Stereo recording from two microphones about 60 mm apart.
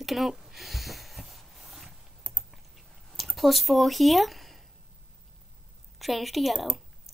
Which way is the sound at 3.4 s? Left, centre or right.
Centre.